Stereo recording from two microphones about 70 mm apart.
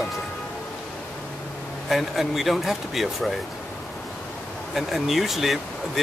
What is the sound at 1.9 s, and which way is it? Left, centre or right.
Speech, centre.